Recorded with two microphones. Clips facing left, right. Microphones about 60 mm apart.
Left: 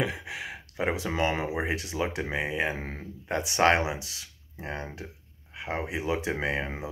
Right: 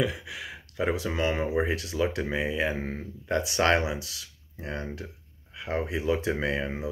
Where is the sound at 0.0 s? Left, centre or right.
Left.